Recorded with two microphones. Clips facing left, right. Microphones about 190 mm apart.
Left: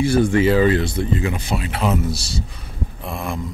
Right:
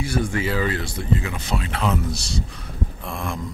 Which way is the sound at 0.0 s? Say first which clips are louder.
Left 8 dB; 30° left (ahead or behind).